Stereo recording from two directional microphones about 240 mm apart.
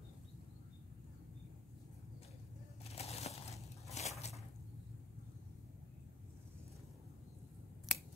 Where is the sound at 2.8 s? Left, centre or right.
Left.